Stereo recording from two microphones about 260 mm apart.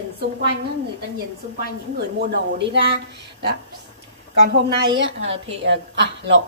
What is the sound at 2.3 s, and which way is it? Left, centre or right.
Speech, right.